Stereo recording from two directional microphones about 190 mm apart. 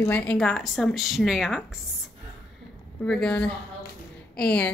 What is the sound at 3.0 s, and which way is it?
A woman's voice, 5° left (ahead or behind).